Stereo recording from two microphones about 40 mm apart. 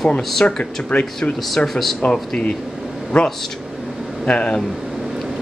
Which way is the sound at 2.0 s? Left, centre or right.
Left.